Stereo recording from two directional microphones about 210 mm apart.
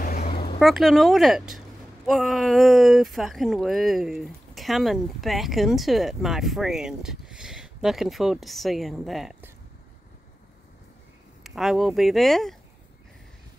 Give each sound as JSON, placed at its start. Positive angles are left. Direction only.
{"t": 0.0, "sound": "a sound", "side_deg": 45}
{"t": 0.6, "sound": "speech", "side_deg": 0}
{"t": 11.4, "sound": "speech", "side_deg": 0}